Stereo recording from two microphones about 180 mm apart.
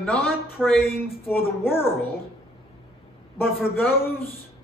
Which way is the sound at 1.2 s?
10° left (ahead or behind).